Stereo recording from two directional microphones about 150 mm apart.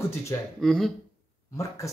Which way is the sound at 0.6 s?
Centre (ahead or behind).